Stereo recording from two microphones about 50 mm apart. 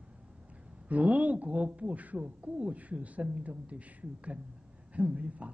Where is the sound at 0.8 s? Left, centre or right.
Right.